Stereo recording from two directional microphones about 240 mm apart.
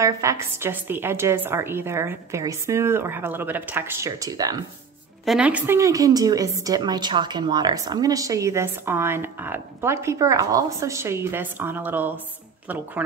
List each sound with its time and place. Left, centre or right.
0.0 s a woman's voice: centre
5.2 s a woman's voice: centre